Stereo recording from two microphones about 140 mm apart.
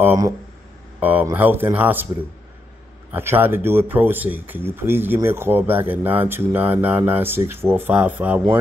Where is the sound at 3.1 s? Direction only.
15° right (ahead or behind).